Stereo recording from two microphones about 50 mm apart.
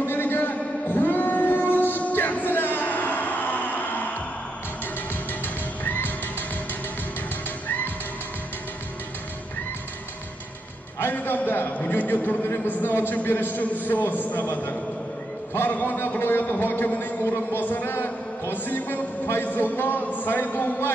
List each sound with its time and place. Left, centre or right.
0.0 s music: left
5.9 s music: left
11.0 s music: left
12.0 s a man's voice: left